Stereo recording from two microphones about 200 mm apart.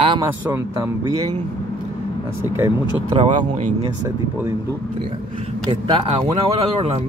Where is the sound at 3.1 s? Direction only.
25° right (ahead or behind).